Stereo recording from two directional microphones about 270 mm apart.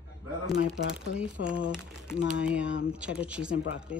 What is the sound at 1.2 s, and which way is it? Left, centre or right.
Speech, centre.